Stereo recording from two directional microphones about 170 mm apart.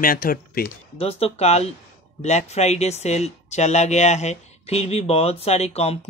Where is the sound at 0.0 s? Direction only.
55° left (ahead or behind).